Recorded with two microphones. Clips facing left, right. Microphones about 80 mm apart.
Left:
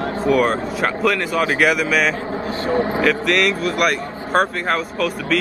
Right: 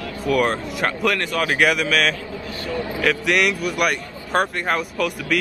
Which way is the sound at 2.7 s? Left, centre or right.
Left.